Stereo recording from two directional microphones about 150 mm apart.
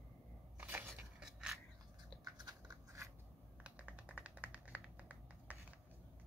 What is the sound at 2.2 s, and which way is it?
Biting, 30° right (ahead or behind).